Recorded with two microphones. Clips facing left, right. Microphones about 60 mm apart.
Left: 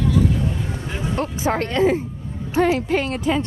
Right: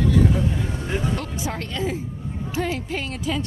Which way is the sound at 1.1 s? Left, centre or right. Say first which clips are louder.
Left 6 dB; left.